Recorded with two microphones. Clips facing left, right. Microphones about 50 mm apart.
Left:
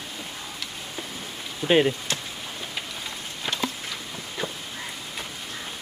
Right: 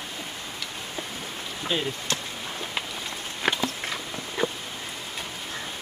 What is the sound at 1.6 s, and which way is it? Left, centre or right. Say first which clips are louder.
Speech: left 8 dB; right.